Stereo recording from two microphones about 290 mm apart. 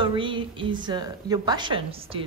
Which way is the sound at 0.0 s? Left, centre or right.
Centre.